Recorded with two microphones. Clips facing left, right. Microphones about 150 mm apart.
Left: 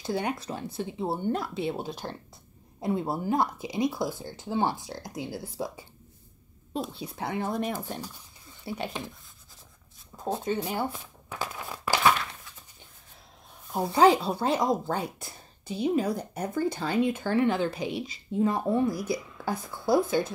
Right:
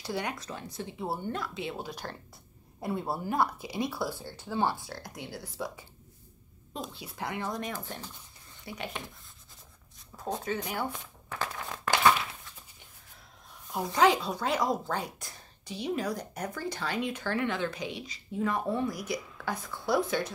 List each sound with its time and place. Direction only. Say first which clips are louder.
0.0 s speech: left 5 dB; 30° left (ahead or behind)
1.3 s speech: left 6 dB; 35° left (ahead or behind)
7.0 s speech: left 4 dB; 25° left (ahead or behind)
7.6 s speech: left 6 dB; 15° left (ahead or behind)
8.6 s speech: left 5 dB; 30° left (ahead or behind)
10.4 s speech: left 6 dB; 25° left (ahead or behind)
10.8 s crumpling: left 3 dB; 5° left (ahead or behind)
13.7 s speech: left 4 dB; 30° left (ahead or behind)